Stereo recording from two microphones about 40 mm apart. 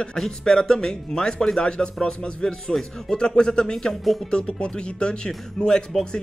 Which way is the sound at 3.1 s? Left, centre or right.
Left.